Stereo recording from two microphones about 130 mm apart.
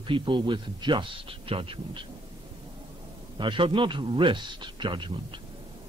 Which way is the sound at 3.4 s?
40° right (ahead or behind).